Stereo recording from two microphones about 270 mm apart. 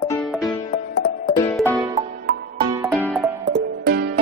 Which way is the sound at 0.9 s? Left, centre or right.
Left.